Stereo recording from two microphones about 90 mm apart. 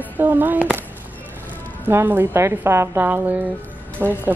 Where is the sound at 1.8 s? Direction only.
25° right (ahead or behind).